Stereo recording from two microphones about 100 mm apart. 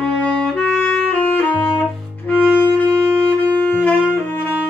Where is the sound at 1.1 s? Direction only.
20° left (ahead or behind).